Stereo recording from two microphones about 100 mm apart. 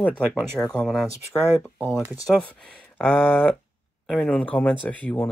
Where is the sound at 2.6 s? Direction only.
10° left (ahead or behind).